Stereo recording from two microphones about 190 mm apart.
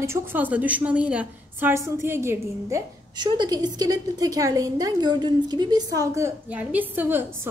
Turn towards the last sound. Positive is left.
turn(degrees=-10)  # may be behind; listen again after turning